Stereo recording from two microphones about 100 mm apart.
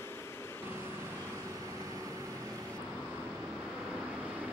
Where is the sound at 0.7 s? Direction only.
25° right (ahead or behind).